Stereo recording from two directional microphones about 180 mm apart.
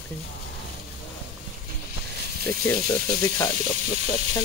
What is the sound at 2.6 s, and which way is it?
Speech, 15° left (ahead or behind).